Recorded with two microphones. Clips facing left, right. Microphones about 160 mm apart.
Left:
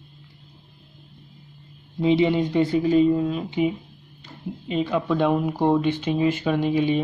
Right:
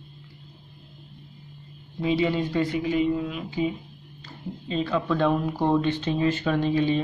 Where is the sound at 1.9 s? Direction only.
20° left (ahead or behind).